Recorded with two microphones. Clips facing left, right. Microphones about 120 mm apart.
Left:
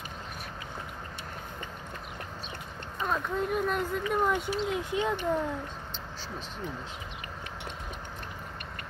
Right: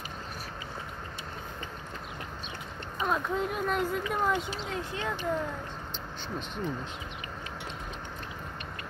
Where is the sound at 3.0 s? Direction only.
5° right (ahead or behind).